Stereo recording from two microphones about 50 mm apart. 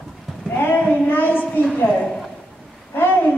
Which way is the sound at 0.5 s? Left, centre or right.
Left.